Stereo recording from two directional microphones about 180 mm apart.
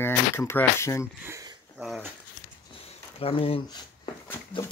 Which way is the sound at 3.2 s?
30° left (ahead or behind).